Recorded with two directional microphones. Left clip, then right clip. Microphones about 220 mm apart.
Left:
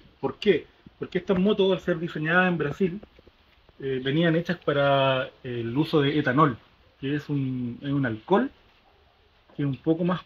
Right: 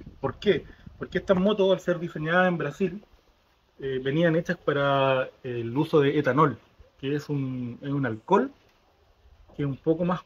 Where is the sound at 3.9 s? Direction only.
25° right (ahead or behind).